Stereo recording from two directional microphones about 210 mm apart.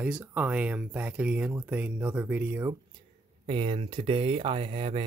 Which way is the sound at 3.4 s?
25° right (ahead or behind).